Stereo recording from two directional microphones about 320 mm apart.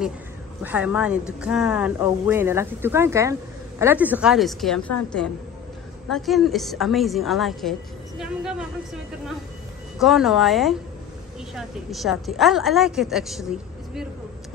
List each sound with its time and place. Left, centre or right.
0.6 s speech: centre
6.0 s speech: centre
9.9 s speech: centre